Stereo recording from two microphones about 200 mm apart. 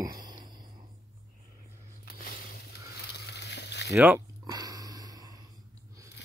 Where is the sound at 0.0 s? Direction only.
20° right (ahead or behind).